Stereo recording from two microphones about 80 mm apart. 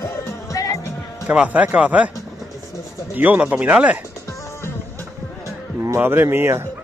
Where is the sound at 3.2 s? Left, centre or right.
Centre.